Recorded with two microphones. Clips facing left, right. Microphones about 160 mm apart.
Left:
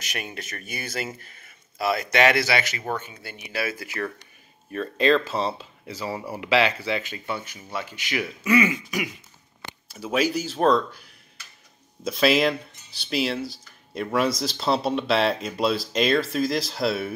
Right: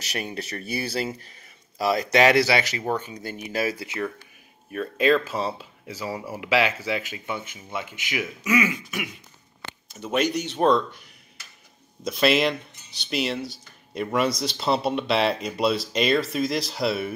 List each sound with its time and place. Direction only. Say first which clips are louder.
0.0 s speech: right 3 dB; 35° right (ahead or behind)
4.7 s speech: even; 10° right (ahead or behind)